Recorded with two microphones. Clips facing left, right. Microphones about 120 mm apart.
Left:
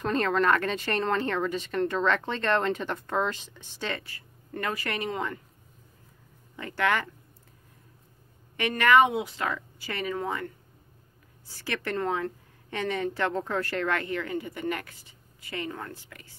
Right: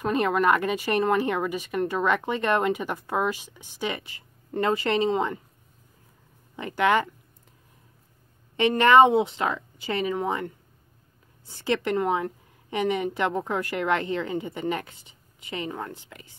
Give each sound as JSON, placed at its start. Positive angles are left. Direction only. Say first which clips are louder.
{"t": 0.0, "sound": "speech", "louder": "right 2 dB", "side_deg": -10}
{"t": 6.5, "sound": "a woman's voice", "louder": "right 5 dB", "side_deg": -20}
{"t": 8.5, "sound": "a woman's voice", "louder": "right 4 dB", "side_deg": -25}